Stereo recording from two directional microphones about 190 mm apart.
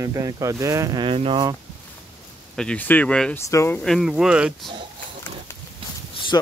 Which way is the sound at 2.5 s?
5° left (ahead or behind).